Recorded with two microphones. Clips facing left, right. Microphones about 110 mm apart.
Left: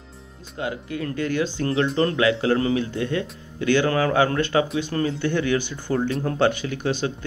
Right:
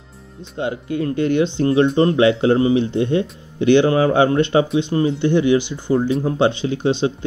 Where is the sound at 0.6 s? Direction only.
25° right (ahead or behind).